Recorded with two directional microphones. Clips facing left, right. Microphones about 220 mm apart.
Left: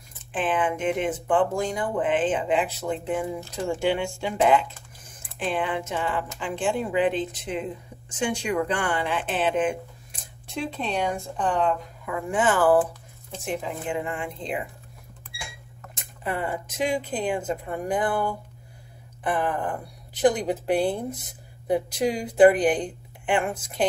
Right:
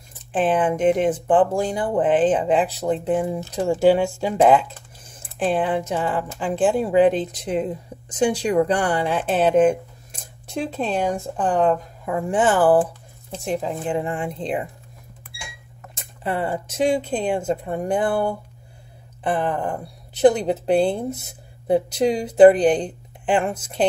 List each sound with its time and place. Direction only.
0.3 s a woman's voice: 40° right (ahead or behind)
16.2 s speech: 30° right (ahead or behind)